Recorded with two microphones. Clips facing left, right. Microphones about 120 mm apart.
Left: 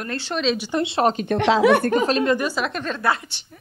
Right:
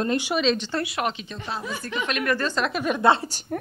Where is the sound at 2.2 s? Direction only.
15° left (ahead or behind).